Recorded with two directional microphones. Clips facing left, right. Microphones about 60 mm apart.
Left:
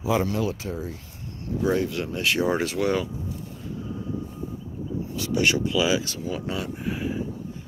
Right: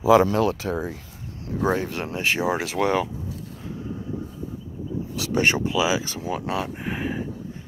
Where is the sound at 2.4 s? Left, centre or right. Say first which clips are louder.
Left 1 dB; centre.